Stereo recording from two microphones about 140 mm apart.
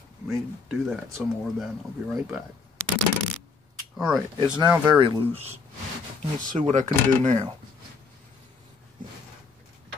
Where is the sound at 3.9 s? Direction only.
Centre (ahead or behind).